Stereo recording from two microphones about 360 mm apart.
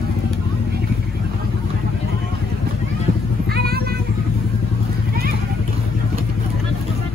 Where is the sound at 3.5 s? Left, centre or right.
Right.